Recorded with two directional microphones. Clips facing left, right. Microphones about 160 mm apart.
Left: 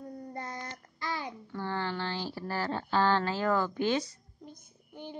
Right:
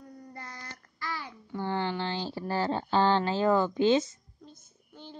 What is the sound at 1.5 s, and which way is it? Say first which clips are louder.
Speech: right 4 dB; 25° right (ahead or behind).